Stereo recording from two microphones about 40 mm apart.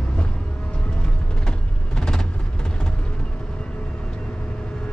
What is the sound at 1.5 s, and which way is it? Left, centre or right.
Music, centre.